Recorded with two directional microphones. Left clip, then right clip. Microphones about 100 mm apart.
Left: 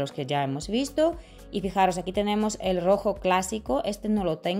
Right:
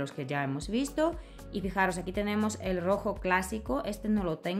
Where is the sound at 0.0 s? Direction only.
35° left (ahead or behind).